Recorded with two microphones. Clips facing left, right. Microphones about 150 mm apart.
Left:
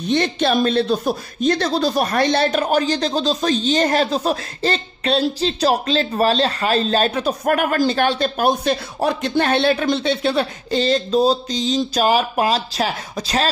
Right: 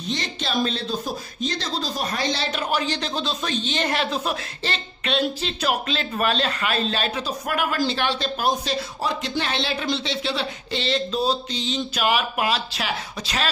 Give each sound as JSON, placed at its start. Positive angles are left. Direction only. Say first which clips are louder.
{"t": 0.1, "sound": "speech", "louder": "left 10 dB", "side_deg": 60}